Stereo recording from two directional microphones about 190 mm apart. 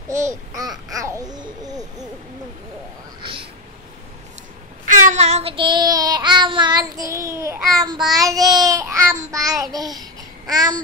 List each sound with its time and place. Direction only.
0.2 s babbling: 15° right (ahead or behind)
3.2 s a sound: 25° right (ahead or behind)
4.8 s child singing: 40° right (ahead or behind); by 9.8 s 20° right (ahead or behind)
10.5 s babbling: 20° right (ahead or behind)